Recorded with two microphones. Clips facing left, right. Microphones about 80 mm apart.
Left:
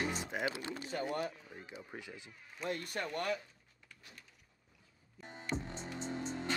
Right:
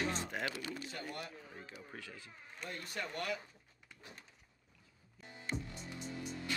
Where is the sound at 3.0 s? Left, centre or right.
Left.